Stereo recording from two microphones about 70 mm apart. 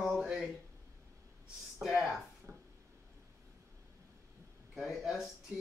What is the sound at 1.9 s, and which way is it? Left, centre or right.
Speech, centre.